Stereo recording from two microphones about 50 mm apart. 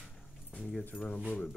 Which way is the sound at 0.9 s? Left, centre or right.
Left.